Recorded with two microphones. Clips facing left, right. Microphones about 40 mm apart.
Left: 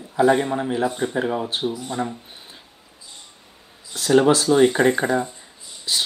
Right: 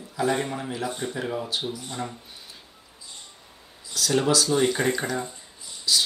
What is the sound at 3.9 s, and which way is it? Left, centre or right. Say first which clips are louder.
Speech: left 7 dB; left.